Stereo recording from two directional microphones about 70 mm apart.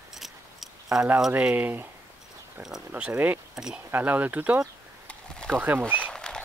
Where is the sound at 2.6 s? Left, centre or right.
Centre.